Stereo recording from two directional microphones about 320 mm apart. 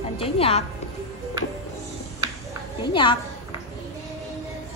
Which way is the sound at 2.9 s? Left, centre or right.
Centre.